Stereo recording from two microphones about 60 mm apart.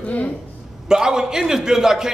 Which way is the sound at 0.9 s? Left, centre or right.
Centre.